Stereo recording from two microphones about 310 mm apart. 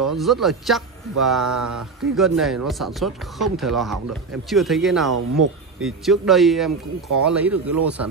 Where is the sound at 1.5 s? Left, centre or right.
Right.